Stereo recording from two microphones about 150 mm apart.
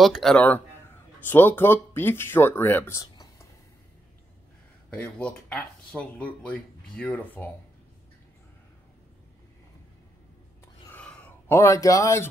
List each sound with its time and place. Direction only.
0.0 s speech: centre (ahead or behind); by 3.4 s 20° left (ahead or behind)
4.9 s speech: 10° left (ahead or behind)
10.9 s a sound: 10° left (ahead or behind)